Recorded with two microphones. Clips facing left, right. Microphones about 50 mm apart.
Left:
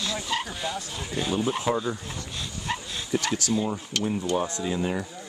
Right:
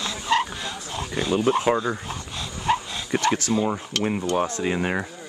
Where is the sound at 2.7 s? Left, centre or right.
Right.